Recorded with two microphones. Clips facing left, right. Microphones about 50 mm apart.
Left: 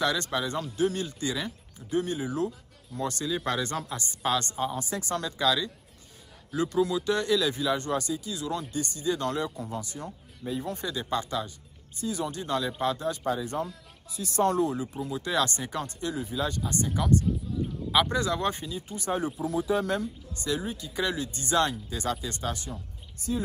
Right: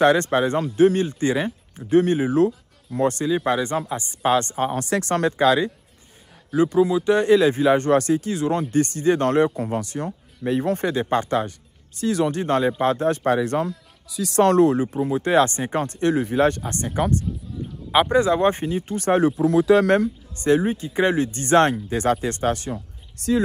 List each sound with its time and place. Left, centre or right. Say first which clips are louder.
0.0 s speech: right 11 dB; right
1.9 s speech: right 11 dB; right
6.5 s speech: right 8 dB; right
12.0 s speech: right 10 dB; right
14.0 s speech: right 8 dB; right
14.9 s speech: right 10 dB; right
16.1 s speech: right 13 dB; right
17.9 s speech: right 8 dB; right